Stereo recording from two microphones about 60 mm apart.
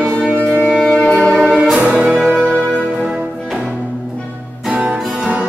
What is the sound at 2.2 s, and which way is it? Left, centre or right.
Music, centre.